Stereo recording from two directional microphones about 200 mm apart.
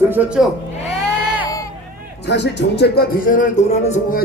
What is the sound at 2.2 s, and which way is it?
Speech, 60° left (ahead or behind).